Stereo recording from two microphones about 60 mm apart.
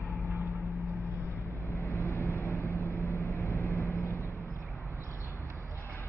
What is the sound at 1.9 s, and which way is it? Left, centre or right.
Vehicle, left.